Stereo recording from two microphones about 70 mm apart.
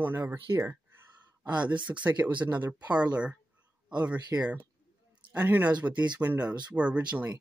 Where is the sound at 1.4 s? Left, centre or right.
Right.